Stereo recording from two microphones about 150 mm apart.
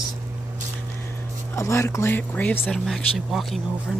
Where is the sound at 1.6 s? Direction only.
20° left (ahead or behind).